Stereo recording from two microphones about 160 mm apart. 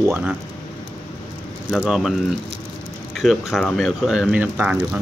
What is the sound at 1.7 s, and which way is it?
Speech, centre (ahead or behind).